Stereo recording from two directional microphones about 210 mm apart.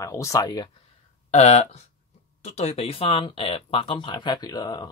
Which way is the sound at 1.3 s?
30° left (ahead or behind).